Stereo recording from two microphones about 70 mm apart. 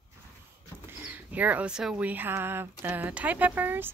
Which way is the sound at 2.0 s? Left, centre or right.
Right.